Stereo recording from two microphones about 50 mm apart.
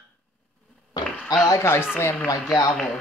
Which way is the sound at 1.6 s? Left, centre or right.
Left.